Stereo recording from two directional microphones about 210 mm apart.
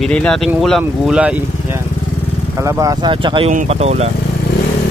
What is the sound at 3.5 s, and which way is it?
Speech, 35° right (ahead or behind).